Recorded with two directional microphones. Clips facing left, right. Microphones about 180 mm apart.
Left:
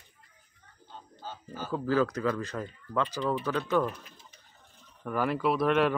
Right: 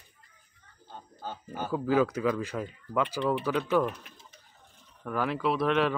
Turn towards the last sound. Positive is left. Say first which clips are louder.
# left 1 dB
turn(degrees=5)  # may be behind; listen again after turning